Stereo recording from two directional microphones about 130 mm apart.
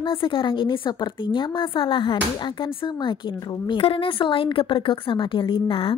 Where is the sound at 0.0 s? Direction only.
40° left (ahead or behind).